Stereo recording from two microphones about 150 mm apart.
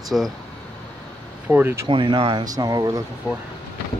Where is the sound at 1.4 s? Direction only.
15° right (ahead or behind).